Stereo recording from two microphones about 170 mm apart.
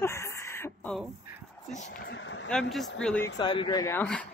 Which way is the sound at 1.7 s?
45° left (ahead or behind).